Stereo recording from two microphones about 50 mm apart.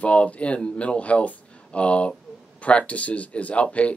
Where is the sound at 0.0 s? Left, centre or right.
Left.